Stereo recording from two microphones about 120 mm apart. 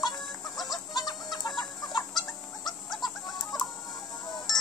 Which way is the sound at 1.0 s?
35° left (ahead or behind).